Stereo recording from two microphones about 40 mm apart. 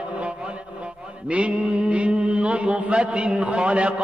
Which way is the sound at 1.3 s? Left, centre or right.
Right.